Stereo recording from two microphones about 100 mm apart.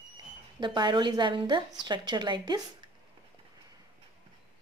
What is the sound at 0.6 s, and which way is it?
A woman's voice, 50° right (ahead or behind).